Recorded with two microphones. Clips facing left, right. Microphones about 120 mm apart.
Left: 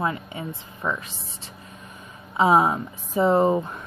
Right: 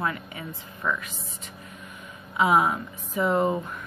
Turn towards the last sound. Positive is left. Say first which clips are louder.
# left 4 dB
turn(degrees=30)  # may be behind; listen again after turning